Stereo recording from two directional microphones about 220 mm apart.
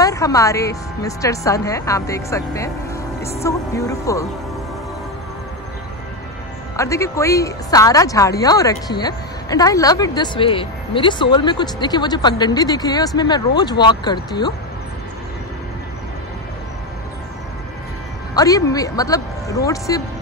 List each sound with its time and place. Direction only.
0.0 s speech: 15° left (ahead or behind)
6.8 s speech: 15° left (ahead or behind)
18.3 s speech: 15° left (ahead or behind)